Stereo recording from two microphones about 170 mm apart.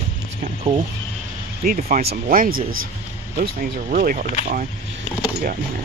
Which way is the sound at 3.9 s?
55° right (ahead or behind).